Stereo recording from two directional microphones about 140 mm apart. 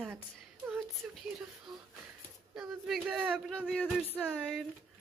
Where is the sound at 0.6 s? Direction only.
Centre (ahead or behind).